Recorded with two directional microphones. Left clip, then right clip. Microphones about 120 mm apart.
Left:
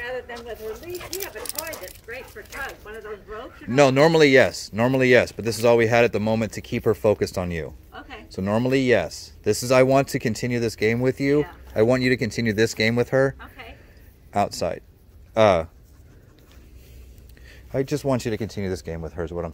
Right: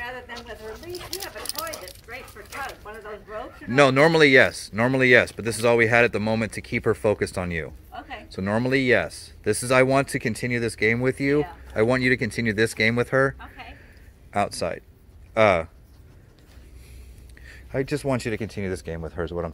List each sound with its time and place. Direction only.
1.1 s speech: centre (ahead or behind)
2.6 s speech: 10° left (ahead or behind)
3.3 s speech: 35° left (ahead or behind)
7.9 s speech: 5° left (ahead or behind)
8.3 s speech: 30° left (ahead or behind)
13.4 s a sound: centre (ahead or behind)
14.3 s speech: 40° left (ahead or behind)
17.5 s speech: 35° left (ahead or behind)
18.9 s speech: 20° left (ahead or behind)